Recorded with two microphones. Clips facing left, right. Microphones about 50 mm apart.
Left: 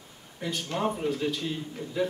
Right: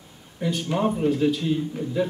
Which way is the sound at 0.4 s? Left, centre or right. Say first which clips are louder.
Right 6 dB; centre.